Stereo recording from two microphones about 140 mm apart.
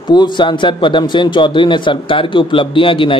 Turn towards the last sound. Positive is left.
turn(degrees=40)  # may be behind; listen again after turning